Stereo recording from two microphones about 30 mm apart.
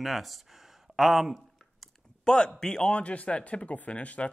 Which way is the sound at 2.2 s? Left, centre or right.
Left.